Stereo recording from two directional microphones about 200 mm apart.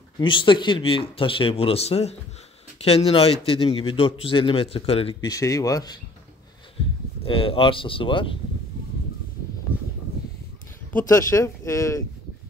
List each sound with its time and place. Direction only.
0.2 s a man's voice: 25° left (ahead or behind)
5.3 s speech: 15° left (ahead or behind)
7.2 s a man's voice: 25° left (ahead or behind)
9.7 s a sound: 10° right (ahead or behind)
11.1 s speech: 15° left (ahead or behind)